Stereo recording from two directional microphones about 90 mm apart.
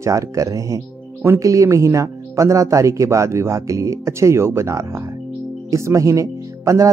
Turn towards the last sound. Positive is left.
turn(degrees=-35)  # may be behind; listen again after turning